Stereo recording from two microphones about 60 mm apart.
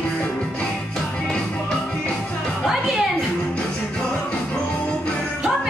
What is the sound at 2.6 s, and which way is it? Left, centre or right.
Music, centre.